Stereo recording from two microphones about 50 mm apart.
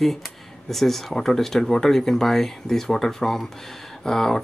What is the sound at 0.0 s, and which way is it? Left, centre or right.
Speech, centre.